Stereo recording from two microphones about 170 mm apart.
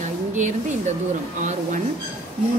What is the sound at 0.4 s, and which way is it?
Speech, 45° right (ahead or behind).